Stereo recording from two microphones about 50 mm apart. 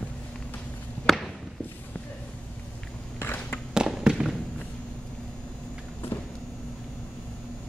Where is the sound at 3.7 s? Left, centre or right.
Centre.